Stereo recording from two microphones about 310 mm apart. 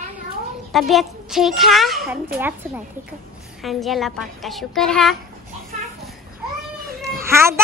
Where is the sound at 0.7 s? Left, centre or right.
Centre.